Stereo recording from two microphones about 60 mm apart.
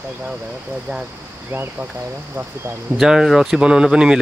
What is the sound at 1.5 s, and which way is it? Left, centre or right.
Speech, right.